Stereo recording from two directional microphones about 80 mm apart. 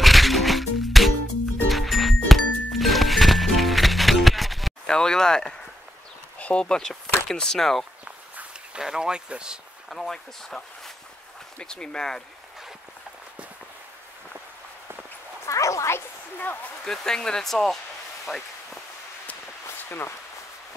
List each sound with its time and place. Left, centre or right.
0.0 s music: centre
4.8 s a sound: centre
6.3 s speech: centre
8.4 s speech: centre
9.8 s speech: centre
15.4 s speech: left
16.8 s speech: centre
18.2 s a sound: centre
19.8 s speech: left